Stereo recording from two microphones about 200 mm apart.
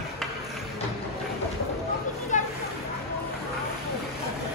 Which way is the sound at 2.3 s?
40° left (ahead or behind).